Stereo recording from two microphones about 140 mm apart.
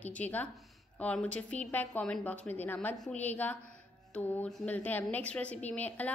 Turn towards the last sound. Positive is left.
turn(degrees=10)  # may be behind; listen again after turning